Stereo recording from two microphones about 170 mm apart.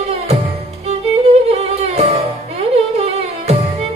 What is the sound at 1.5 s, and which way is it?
Music, 40° right (ahead or behind).